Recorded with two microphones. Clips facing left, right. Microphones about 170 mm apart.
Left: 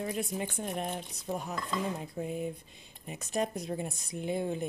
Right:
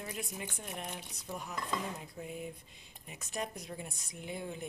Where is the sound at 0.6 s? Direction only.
50° left (ahead or behind).